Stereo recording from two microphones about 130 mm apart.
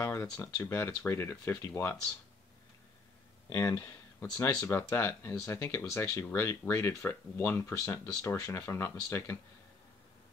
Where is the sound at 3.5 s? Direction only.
20° left (ahead or behind).